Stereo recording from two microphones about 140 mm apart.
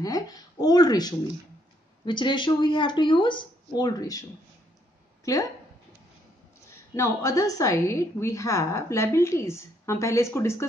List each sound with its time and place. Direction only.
0.0 s speech: 25° left (ahead or behind)
6.9 s a woman's voice: 25° left (ahead or behind)